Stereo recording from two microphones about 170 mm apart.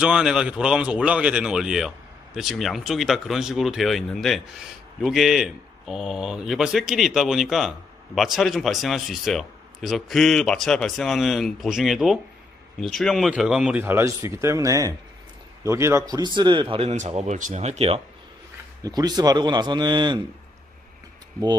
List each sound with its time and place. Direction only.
0.0 s speech: 5° right (ahead or behind); by 16.6 s 25° right (ahead or behind)
16.7 s speech: 40° right (ahead or behind)
18.8 s speech: 25° right (ahead or behind)